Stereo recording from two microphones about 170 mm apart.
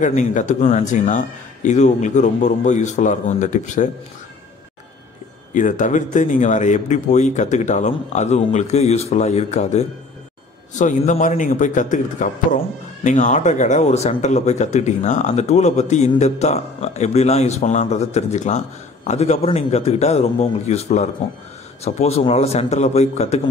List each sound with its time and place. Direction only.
0.0 s a man's voice: 45° left (ahead or behind)
5.5 s a man's voice: 50° left (ahead or behind)